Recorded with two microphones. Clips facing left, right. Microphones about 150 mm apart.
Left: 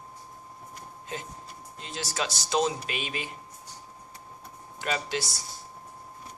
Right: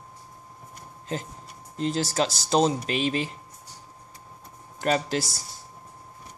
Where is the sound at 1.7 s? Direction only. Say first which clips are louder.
Right 9 dB; 35° right (ahead or behind).